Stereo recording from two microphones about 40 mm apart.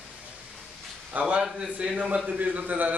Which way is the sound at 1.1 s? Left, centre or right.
Right.